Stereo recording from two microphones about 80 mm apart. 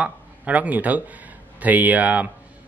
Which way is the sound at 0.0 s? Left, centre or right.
Centre.